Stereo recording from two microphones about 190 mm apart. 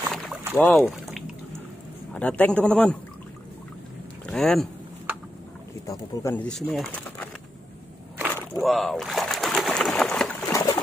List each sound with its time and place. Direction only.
0.0 s boat: centre (ahead or behind)
0.6 s speech: centre (ahead or behind)
4.3 s speech: centre (ahead or behind)
5.9 s speech: 10° left (ahead or behind)
8.5 s pigeon: centre (ahead or behind)
10.5 s trickle: 15° left (ahead or behind)